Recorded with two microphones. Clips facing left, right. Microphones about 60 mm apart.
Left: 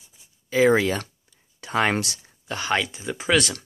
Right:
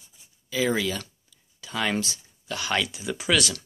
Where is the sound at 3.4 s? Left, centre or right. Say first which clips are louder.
Left 3 dB; left.